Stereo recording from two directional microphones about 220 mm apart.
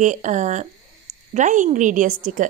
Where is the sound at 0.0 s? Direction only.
35° right (ahead or behind).